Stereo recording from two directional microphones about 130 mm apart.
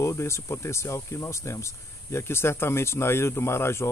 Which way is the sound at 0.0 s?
20° left (ahead or behind).